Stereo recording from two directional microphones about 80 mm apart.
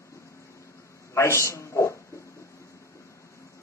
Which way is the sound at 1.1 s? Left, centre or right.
Left.